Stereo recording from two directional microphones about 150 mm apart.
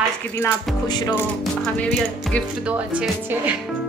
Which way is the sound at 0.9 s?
30° left (ahead or behind).